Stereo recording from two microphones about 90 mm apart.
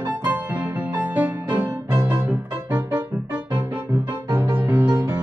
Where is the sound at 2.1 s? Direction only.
15° right (ahead or behind).